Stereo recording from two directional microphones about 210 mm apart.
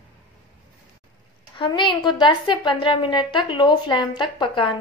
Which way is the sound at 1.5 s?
25° left (ahead or behind).